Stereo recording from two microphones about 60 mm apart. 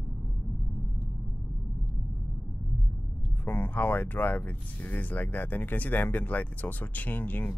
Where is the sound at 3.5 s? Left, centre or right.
Left.